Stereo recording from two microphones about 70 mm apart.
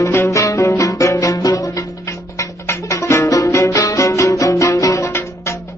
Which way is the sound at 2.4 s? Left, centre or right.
Left.